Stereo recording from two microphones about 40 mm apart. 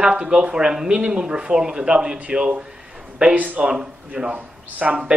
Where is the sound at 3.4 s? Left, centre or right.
Right.